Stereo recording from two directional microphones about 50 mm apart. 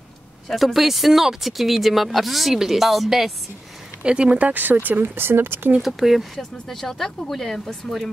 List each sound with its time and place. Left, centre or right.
0.5 s speech: centre
4.0 s speech: right
5.8 s speech: centre
6.7 s speech: centre